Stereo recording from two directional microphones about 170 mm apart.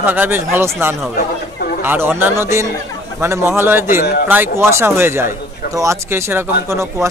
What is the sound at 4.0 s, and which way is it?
Speech, 65° left (ahead or behind).